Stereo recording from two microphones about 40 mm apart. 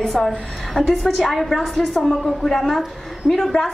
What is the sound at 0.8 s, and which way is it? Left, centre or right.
Speech, left.